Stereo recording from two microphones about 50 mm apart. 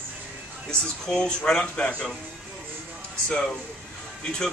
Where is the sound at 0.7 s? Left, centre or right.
Centre.